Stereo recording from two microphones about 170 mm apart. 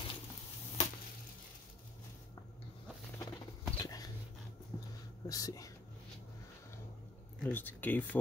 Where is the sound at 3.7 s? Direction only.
20° left (ahead or behind).